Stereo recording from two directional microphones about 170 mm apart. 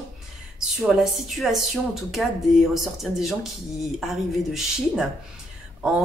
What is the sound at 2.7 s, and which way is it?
Speech, centre (ahead or behind).